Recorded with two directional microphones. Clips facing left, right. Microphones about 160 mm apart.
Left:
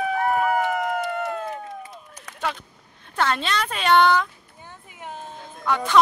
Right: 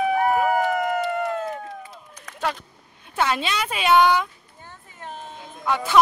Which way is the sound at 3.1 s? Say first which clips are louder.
Even; 10° right (ahead or behind).